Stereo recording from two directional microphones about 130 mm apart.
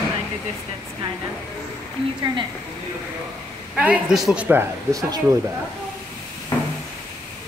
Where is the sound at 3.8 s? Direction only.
5° right (ahead or behind).